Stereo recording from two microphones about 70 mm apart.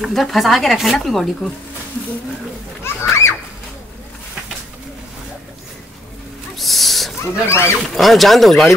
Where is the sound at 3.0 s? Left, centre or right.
Left.